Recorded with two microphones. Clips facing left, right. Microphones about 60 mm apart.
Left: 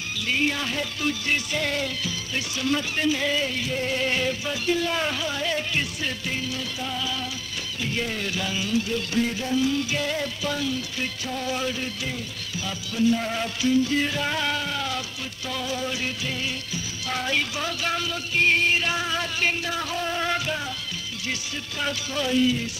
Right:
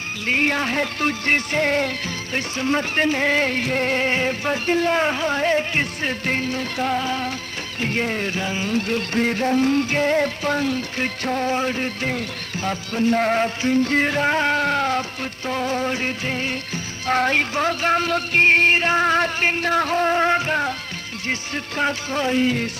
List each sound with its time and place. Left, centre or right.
0.3 s music: right